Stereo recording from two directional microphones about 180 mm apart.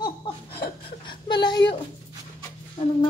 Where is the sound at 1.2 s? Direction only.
25° left (ahead or behind).